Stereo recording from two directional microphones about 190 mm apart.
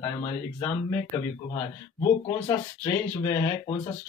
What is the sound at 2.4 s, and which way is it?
Speech, 15° left (ahead or behind).